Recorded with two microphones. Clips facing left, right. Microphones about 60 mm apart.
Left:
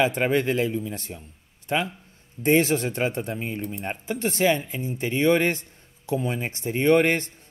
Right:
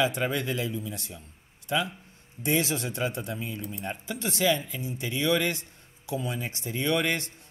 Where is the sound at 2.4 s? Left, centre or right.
Left.